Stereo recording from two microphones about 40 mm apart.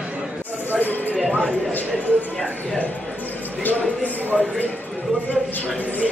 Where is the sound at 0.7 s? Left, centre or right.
Left.